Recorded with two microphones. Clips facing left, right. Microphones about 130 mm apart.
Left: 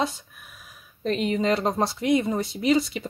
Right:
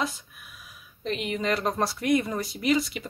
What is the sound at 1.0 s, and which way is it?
Speech, 35° left (ahead or behind).